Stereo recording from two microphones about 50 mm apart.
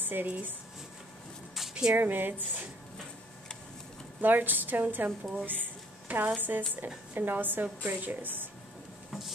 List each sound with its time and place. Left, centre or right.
0.0 s a woman's voice: right
1.5 s a sound: centre
2.0 s a woman's voice: right
4.2 s a woman's voice: right